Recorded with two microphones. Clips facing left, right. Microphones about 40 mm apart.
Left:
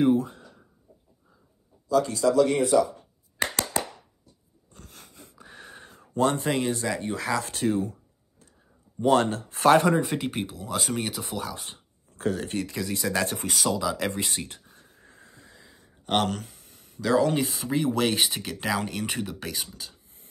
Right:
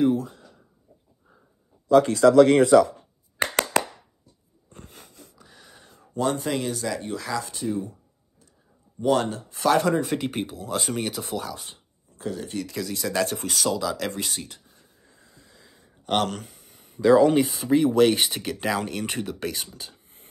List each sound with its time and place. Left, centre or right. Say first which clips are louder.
0.0 s a sound: even; centre
1.9 s a man's voice: right 6 dB; right
3.8 s a sound: right 7 dB; right
4.7 s wheeze: right 4 dB; right
5.3 s a sound: left 5 dB; left
6.5 s speech: left 1 dB; left
7.5 s speech: left 3 dB; left
9.0 s speech: left 1 dB; left
9.8 s speech: even; centre
11.5 s speech: even; left
12.2 s speech: left 3 dB; left
12.7 s speech: right 3 dB; centre
14.5 s a sound: left 1 dB; left
15.6 s speech: right 3 dB; centre